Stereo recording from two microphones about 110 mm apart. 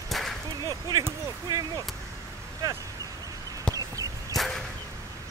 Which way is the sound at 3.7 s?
10° left (ahead or behind).